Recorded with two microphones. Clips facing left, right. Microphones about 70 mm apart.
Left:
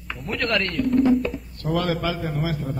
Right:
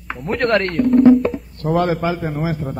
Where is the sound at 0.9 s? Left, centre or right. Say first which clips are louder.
Right 8 dB; right.